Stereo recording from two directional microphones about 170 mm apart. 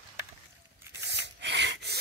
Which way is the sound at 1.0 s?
90° right.